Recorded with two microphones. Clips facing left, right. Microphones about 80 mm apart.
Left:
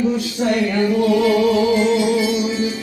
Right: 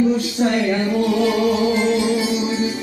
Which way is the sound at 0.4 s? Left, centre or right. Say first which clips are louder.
Left 3 dB; right.